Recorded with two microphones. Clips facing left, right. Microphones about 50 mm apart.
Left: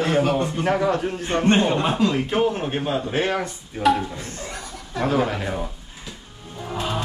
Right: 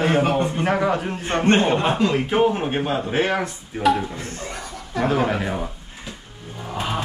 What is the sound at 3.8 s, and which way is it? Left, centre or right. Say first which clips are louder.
Speech: even; centre.